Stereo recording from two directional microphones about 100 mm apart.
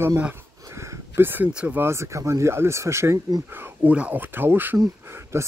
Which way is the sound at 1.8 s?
30° right (ahead or behind).